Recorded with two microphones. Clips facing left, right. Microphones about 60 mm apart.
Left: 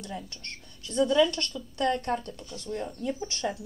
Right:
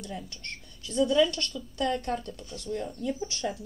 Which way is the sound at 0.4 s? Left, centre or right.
Left.